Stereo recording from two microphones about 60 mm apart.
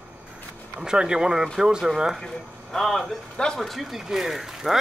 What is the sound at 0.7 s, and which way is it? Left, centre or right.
Speech, centre.